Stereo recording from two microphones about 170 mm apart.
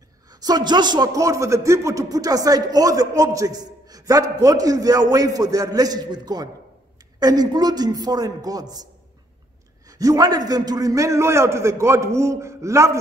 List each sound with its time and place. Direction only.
0.3 s a man's voice: 20° right (ahead or behind)
9.8 s a man's voice: 20° right (ahead or behind)